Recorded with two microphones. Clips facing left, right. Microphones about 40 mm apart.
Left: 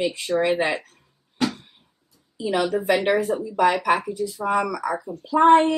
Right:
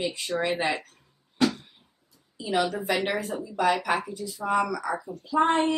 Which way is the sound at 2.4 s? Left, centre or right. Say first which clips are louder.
Left 4 dB; centre.